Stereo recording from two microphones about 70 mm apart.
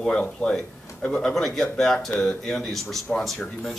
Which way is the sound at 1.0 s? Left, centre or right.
Centre.